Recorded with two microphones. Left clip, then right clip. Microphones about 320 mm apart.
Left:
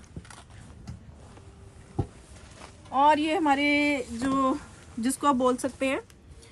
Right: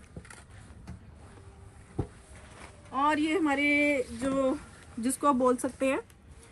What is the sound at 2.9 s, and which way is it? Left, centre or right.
Speech, left.